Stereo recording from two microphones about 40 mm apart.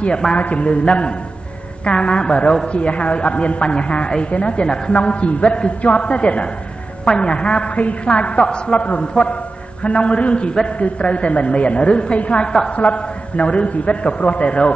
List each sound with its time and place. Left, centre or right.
0.3 s a man's voice: left